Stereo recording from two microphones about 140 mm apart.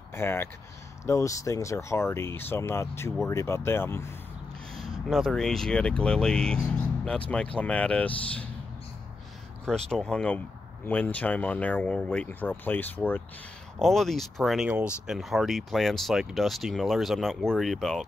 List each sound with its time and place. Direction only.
0.1 s speech: 15° left (ahead or behind)
5.1 s speech: centre (ahead or behind)
9.7 s speech: 5° left (ahead or behind)
13.7 s speech: centre (ahead or behind)